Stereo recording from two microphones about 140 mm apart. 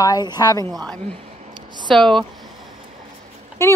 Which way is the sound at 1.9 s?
5° left (ahead or behind).